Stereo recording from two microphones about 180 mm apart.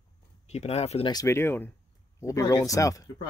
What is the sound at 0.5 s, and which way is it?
Speech, 35° left (ahead or behind).